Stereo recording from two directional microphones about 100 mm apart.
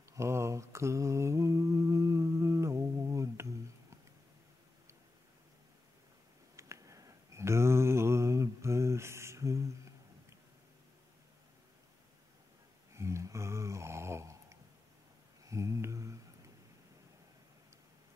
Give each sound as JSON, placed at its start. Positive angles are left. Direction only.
{"t": 0.1, "sound": "mantra", "side_deg": -30}
{"t": 6.5, "sound": "mantra", "side_deg": -30}
{"t": 12.9, "sound": "a sound", "side_deg": -30}